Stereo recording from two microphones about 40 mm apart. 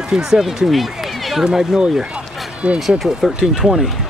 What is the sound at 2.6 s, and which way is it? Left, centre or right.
Speech, right.